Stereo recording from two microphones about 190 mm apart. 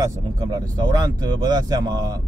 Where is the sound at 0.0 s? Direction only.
20° right (ahead or behind).